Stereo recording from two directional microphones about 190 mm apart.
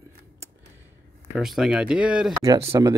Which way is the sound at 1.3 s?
5° right (ahead or behind).